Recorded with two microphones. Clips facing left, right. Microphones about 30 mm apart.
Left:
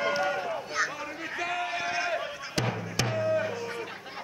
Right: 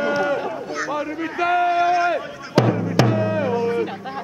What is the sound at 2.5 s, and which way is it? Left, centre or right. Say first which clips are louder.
Music: right 14 dB; centre.